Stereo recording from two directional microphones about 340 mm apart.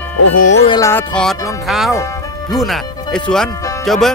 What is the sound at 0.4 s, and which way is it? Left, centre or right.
Speech, left.